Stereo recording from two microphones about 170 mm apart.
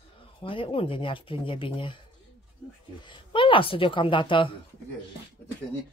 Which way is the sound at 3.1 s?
30° left (ahead or behind).